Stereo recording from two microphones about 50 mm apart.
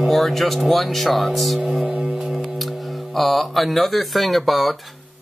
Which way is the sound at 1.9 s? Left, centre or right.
Right.